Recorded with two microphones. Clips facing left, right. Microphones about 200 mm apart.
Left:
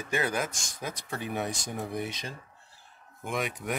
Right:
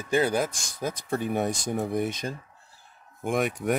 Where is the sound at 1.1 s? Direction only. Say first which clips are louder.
Right 6 dB; 45° right (ahead or behind).